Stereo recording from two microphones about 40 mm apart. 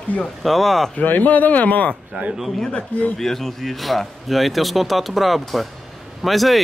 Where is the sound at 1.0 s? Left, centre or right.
Left.